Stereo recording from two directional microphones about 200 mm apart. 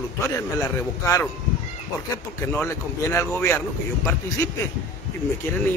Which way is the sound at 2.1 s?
15° left (ahead or behind).